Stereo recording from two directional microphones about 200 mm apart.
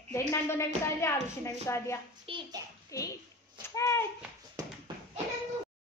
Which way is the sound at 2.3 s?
25° right (ahead or behind).